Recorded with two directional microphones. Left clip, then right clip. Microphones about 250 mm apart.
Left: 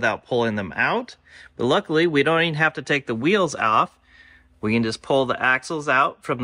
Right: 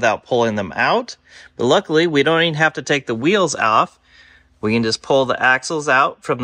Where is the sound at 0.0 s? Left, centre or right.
Centre.